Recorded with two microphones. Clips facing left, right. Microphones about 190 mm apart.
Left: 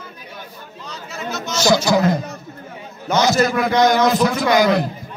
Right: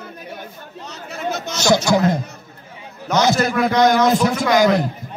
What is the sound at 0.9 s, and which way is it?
Chatter, 60° right (ahead or behind).